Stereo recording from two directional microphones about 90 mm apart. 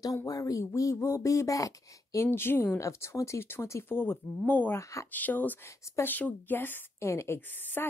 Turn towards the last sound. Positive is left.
turn(degrees=20)  # may be behind; listen again after turning